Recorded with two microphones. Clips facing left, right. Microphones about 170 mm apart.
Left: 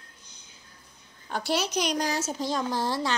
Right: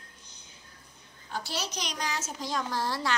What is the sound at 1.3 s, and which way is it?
Speech, 65° left (ahead or behind).